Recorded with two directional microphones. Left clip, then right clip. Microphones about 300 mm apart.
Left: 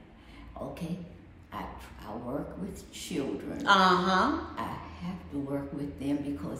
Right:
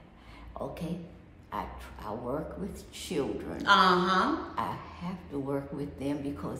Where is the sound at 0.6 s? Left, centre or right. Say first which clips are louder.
Right 2 dB; centre.